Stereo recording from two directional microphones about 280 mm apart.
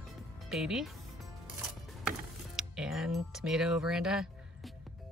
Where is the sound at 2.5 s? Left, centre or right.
Centre.